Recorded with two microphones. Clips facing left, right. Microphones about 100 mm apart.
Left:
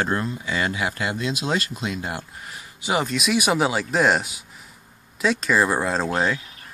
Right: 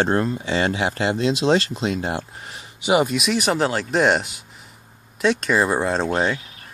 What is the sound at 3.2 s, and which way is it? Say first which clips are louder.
Speech: even; 5° left (ahead or behind).